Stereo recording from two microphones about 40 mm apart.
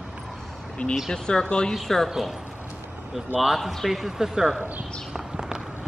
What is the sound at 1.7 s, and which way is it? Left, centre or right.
Speech, centre.